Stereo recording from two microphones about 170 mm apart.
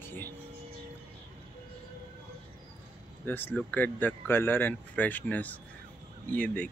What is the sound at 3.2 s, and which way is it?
Speech, 10° left (ahead or behind).